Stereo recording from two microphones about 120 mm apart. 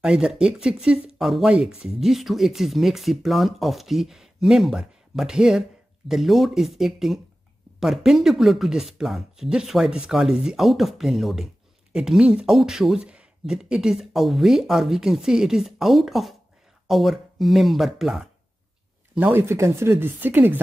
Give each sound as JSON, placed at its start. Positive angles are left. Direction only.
{"t": 0.0, "sound": "speech", "side_deg": -5}
{"t": 19.1, "sound": "speech", "side_deg": -15}